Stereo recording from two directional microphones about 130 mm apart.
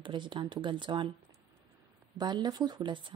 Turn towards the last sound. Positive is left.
turn(degrees=-35)  # may be behind; listen again after turning